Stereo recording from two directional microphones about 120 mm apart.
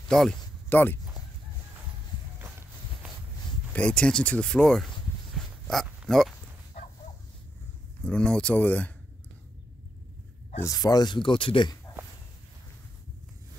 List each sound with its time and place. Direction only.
0.1 s a sound: 5° left (ahead or behind)
3.7 s speech: 10° left (ahead or behind)
6.0 s speech: 5° left (ahead or behind)
8.0 s speech: 10° left (ahead or behind)
10.6 s speech: 30° left (ahead or behind); by 11.7 s 45° left (ahead or behind)